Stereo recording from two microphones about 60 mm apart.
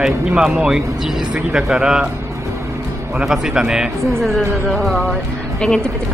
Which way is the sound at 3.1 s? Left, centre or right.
Centre.